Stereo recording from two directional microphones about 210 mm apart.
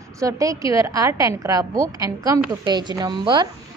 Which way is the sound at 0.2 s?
15° right (ahead or behind).